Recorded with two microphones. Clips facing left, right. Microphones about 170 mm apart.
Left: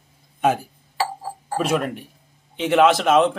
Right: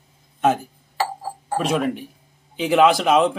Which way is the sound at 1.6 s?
Centre (ahead or behind).